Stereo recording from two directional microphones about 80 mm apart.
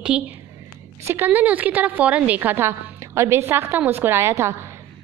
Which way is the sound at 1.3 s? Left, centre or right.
Right.